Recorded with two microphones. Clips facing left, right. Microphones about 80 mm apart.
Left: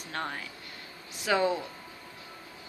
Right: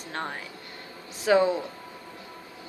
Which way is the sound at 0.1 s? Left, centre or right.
Right.